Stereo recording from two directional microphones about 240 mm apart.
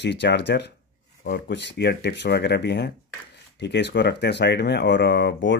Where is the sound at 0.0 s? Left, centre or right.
Left.